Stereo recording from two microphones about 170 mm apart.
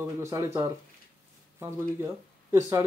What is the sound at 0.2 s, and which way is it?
Speech, 20° right (ahead or behind).